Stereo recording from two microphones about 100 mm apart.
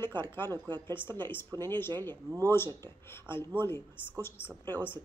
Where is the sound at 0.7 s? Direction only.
45° right (ahead or behind).